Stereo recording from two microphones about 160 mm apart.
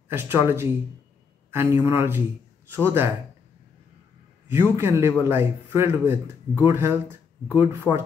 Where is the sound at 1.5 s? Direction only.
15° right (ahead or behind).